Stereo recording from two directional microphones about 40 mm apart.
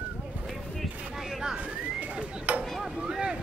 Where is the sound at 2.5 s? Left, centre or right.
Right.